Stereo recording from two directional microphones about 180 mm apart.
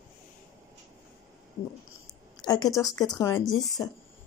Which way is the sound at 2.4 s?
20° left (ahead or behind).